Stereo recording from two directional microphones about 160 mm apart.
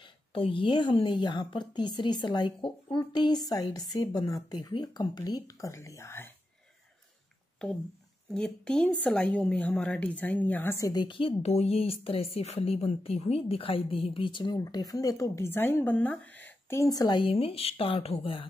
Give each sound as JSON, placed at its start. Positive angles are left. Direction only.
{"t": 0.0, "sound": "a woman's voice", "side_deg": 35}
{"t": 7.6, "sound": "a woman's voice", "side_deg": 5}